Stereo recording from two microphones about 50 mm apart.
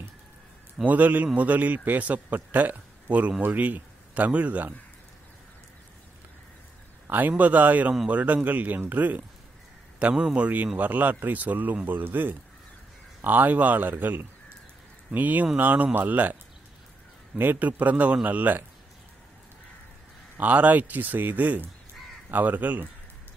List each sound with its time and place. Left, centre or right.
0.8 s a man's voice: right
7.1 s a man's voice: right
9.9 s a man's voice: right
17.4 s a man's voice: right
20.3 s a man's voice: right